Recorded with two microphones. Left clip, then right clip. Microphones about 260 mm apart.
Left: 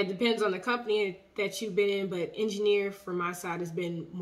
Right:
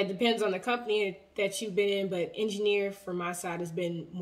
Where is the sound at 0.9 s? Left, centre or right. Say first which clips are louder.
Even; centre.